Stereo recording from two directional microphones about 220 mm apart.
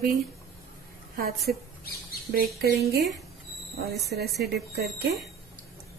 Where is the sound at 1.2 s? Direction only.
45° right (ahead or behind).